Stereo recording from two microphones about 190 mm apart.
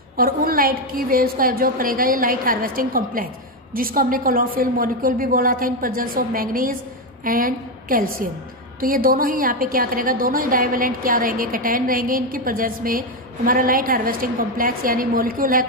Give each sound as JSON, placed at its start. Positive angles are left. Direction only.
{"t": 0.2, "sound": "a woman's voice", "side_deg": -50}